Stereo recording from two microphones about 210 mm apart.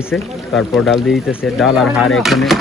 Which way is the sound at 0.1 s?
Centre (ahead or behind).